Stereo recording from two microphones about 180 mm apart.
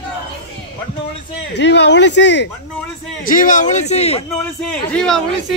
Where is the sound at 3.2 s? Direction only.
50° left (ahead or behind).